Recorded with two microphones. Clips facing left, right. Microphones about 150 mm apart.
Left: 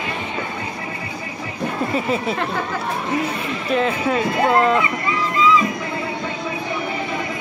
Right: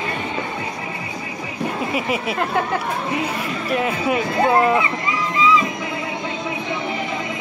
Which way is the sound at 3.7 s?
10° right (ahead or behind).